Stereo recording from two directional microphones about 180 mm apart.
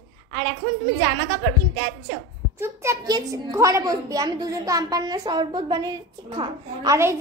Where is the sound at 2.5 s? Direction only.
15° right (ahead or behind).